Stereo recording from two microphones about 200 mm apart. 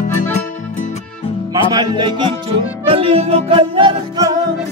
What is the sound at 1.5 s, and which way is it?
Music, 20° right (ahead or behind).